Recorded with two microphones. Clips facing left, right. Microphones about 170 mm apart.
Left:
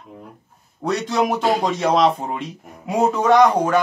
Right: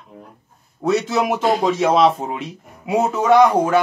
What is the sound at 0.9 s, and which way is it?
Speech, 5° right (ahead or behind).